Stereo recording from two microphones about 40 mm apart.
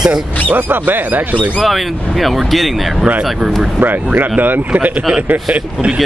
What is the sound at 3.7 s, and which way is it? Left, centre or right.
Speech, right.